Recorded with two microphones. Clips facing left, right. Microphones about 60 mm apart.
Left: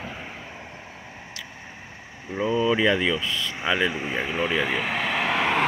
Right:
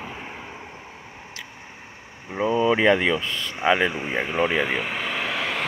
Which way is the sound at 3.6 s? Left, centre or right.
Right.